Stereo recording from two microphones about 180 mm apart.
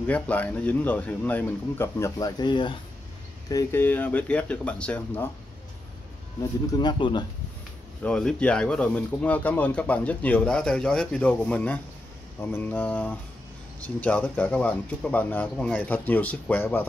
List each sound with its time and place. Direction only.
0.0 s speech: 10° left (ahead or behind); by 2.8 s 25° left (ahead or behind)
3.4 s speech: 15° left (ahead or behind)
6.8 s speech: 25° left (ahead or behind)
8.0 s speech: 5° left (ahead or behind)